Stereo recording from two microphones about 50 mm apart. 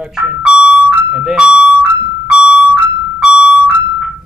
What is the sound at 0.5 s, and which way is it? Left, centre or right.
Music, centre.